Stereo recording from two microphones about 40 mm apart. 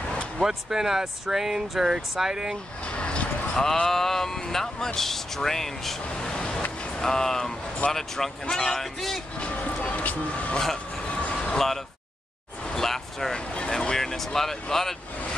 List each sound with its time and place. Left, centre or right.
0.4 s speech: centre
2.9 s a sound: left
3.5 s speech: centre
6.0 s a sound: left
7.0 s speech: centre
9.4 s music: left
11.1 s vehicle: left
11.3 s a sound: centre
12.7 s vehicle: centre
13.3 s vehicle: left